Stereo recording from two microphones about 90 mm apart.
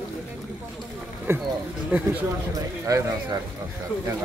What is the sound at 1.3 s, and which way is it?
Speech, 30° right (ahead or behind).